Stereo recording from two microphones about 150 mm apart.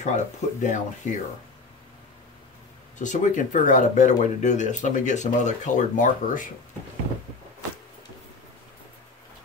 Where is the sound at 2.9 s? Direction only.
55° left (ahead or behind).